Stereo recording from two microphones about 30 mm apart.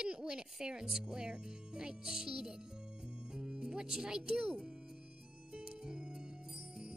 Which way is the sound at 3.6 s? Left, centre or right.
Right.